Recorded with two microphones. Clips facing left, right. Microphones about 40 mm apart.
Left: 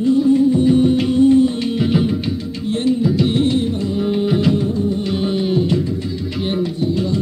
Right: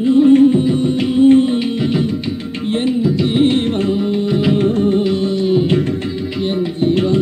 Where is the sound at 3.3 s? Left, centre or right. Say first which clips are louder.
Right 3 dB; right.